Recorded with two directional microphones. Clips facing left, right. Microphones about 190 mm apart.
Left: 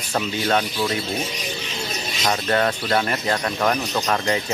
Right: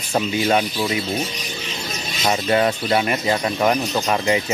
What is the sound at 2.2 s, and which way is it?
Speech, 10° right (ahead or behind).